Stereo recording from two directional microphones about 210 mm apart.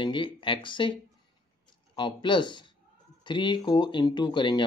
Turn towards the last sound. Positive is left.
turn(degrees=20)  # may be behind; listen again after turning